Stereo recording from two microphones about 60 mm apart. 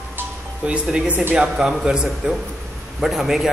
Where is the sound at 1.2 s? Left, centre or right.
Right.